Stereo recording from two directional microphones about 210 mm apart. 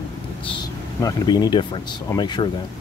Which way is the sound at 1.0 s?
20° left (ahead or behind).